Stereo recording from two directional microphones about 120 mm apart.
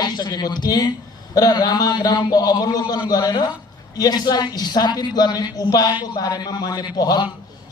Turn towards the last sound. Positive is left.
turn(degrees=35)  # may be behind; listen again after turning